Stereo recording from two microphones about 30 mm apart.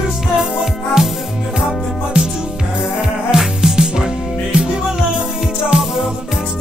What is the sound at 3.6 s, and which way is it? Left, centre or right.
Music, right.